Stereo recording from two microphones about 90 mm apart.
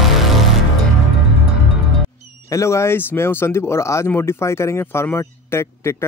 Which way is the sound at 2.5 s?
30° left (ahead or behind).